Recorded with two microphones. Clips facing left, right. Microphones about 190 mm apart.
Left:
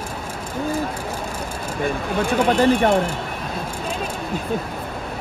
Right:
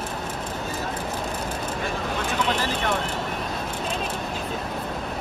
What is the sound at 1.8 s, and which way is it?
Speech, 55° left (ahead or behind).